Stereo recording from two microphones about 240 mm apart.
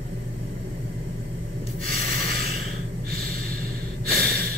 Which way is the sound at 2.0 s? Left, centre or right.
Right.